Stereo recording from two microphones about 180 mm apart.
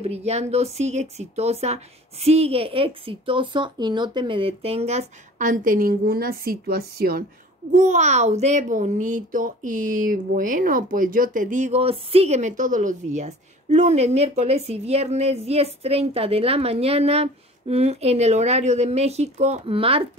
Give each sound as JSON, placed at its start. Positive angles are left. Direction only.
{"t": 0.0, "sound": "a child's voice", "side_deg": -35}
{"t": 7.7, "sound": "a child's voice", "side_deg": -40}